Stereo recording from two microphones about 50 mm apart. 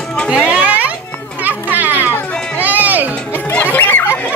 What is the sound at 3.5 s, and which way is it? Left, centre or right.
Music, left.